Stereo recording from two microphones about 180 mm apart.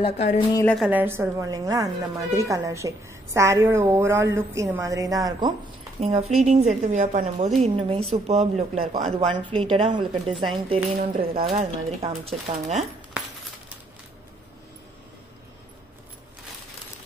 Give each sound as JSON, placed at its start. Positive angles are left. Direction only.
{"t": 0.0, "sound": "a woman's voice", "side_deg": 35}
{"t": 0.8, "sound": "a woman's voice", "side_deg": -10}
{"t": 5.9, "sound": "speech", "side_deg": -35}
{"t": 9.3, "sound": "speech", "side_deg": -25}